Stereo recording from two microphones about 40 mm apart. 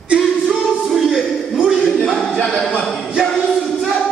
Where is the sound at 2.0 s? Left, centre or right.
Centre.